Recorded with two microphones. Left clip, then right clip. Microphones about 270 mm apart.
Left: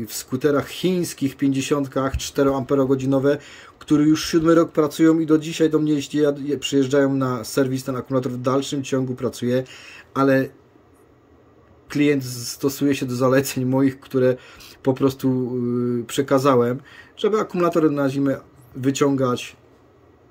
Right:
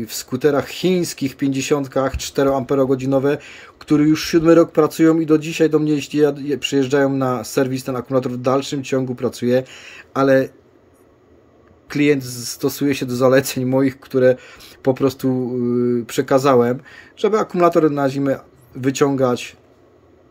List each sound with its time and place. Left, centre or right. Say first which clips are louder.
0.0 s speech: right 4 dB; centre
11.9 s speech: right 3 dB; centre